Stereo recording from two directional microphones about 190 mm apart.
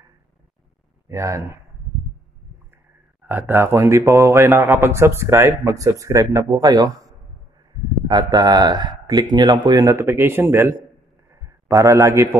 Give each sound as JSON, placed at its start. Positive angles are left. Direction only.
{"t": 1.0, "sound": "speech", "side_deg": -15}
{"t": 3.3, "sound": "a man's voice", "side_deg": -10}